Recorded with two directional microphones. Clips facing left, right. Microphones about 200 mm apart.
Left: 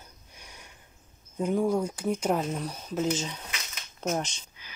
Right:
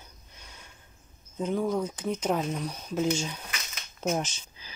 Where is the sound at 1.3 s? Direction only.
10° left (ahead or behind).